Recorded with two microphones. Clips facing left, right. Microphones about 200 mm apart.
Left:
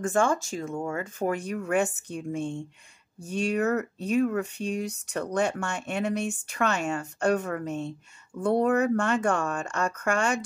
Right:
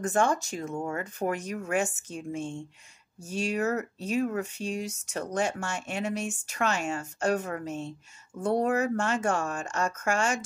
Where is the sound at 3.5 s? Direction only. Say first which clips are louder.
Left 3 dB; 60° left (ahead or behind).